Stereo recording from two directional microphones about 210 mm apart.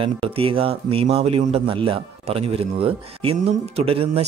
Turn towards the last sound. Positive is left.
turn(degrees=-25)  # may be behind; listen again after turning